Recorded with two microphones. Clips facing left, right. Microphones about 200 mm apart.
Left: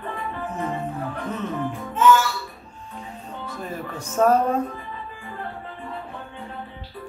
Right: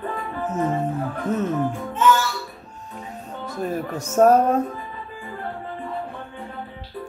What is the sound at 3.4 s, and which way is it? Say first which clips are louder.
Speech: right 7 dB; 40° right (ahead or behind).